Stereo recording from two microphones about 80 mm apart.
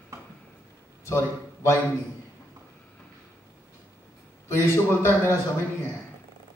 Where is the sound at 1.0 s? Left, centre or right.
Left.